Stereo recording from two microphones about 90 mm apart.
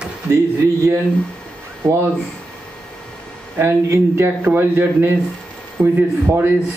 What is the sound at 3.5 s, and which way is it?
Speech, 30° right (ahead or behind).